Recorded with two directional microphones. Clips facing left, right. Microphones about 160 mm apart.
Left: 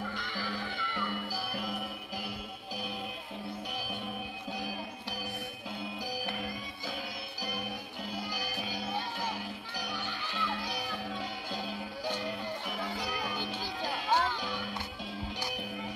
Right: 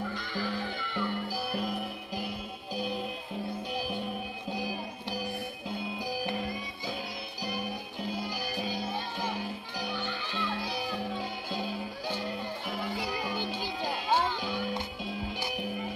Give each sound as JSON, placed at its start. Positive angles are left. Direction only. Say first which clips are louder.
{"t": 13.3, "sound": "music", "louder": "right 3 dB", "side_deg": -15}